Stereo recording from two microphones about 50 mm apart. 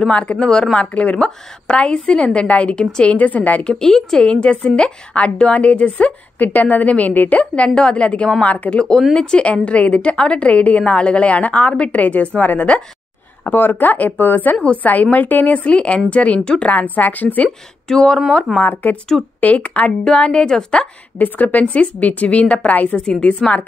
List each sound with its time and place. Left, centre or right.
0.1 s speech: left
0.7 s a woman's voice: left
3.6 s a woman's voice: centre; by 8.7 s left
8.7 s a woman's voice: centre
13.5 s a woman's voice: left
16.7 s a woman's voice: left
17.5 s speech: centre
18.6 s a woman's voice: left
19.4 s a woman's voice: left
21.2 s a woman's voice: left